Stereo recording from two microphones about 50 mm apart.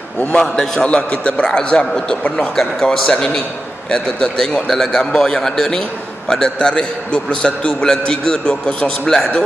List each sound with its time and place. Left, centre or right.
0.4 s a man's voice: centre
0.8 s a man's voice: left
2.5 s a man's voice: centre; by 9.1 s left